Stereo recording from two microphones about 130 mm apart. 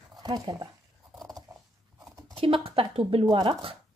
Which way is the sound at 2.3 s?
45° right (ahead or behind).